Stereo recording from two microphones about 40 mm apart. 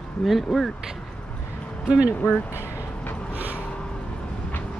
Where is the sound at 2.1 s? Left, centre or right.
Left.